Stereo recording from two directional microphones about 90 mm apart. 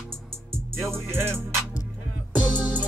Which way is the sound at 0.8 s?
25° right (ahead or behind).